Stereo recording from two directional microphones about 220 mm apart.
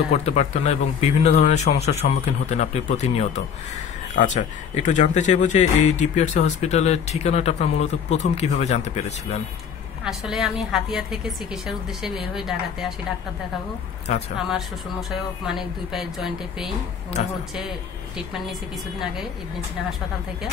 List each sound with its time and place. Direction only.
0.1 s speech: 30° left (ahead or behind)
10.0 s a woman's voice: centre (ahead or behind)
14.1 s speech: 30° left (ahead or behind)
14.5 s a woman's voice: centre (ahead or behind)
17.1 s speech: 30° left (ahead or behind)
17.6 s speech: centre (ahead or behind)